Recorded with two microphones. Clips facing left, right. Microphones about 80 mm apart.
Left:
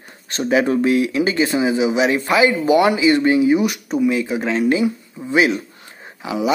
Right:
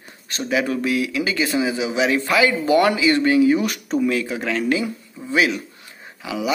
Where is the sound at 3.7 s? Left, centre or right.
Centre.